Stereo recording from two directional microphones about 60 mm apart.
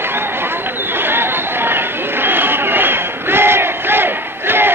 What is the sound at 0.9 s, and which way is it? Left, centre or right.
Chatter, right.